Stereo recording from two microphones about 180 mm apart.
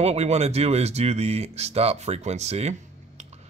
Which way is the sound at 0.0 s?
35° right (ahead or behind).